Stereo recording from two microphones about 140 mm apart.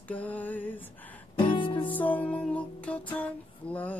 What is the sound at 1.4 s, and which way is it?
Music, 35° left (ahead or behind).